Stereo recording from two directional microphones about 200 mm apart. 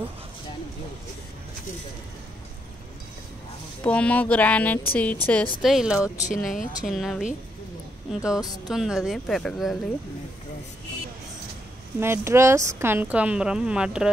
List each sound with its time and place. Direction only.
3.8 s speech: 5° left (ahead or behind)
5.6 s speech: centre (ahead or behind)
6.1 s speech: 35° left (ahead or behind)
6.9 s speech: centre (ahead or behind)
12.0 s speech: 10° right (ahead or behind)